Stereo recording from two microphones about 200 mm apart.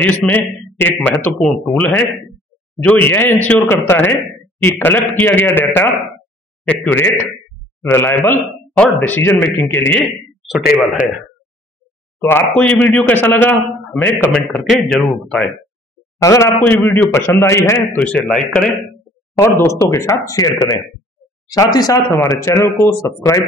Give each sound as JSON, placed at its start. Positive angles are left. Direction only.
{"t": 0.2, "sound": "a man's voice", "side_deg": 0}
{"t": 12.2, "sound": "speech", "side_deg": 10}
{"t": 16.2, "sound": "a man's voice", "side_deg": 15}
{"t": 19.3, "sound": "speech", "side_deg": 15}